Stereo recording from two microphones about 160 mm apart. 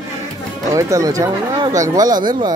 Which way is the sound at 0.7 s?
20° right (ahead or behind).